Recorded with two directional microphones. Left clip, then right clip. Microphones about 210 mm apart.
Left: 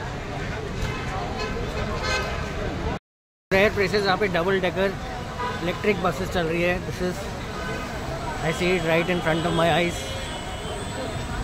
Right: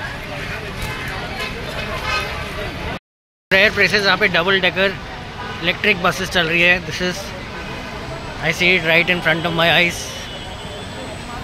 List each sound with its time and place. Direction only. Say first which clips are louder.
3.4 s speech: right 7 dB; centre (ahead or behind)
8.5 s speech: right 8 dB; centre (ahead or behind)